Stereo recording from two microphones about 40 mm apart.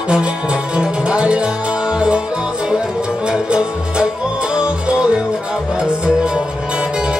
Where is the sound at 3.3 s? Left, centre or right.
Right.